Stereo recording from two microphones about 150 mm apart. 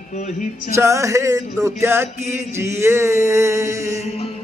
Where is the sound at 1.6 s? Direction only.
15° right (ahead or behind).